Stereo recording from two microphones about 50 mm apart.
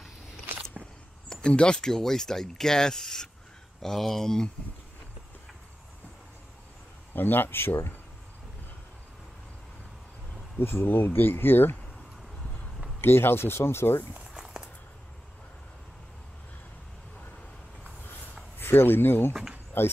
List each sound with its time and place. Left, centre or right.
1.3 s speech: left
1.9 s speech: centre
7.2 s speech: left
10.6 s speech: left
13.0 s speech: left
14.3 s walk: centre
18.6 s speech: left